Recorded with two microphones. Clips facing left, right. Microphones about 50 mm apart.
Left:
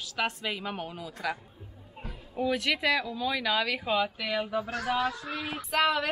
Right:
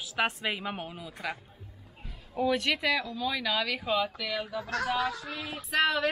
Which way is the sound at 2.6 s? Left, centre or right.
Centre.